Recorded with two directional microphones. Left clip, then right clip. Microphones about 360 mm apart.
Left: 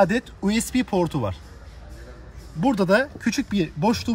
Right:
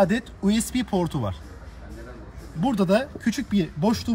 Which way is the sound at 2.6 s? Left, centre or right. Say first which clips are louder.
Left 3 dB; centre.